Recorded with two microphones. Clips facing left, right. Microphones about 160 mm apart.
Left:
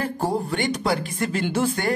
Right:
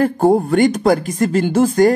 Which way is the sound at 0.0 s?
55° right (ahead or behind).